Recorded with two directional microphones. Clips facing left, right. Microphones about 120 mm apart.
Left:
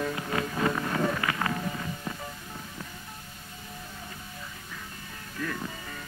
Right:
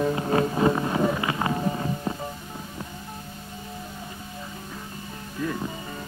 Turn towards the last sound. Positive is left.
turn(degrees=-20)  # may be behind; listen again after turning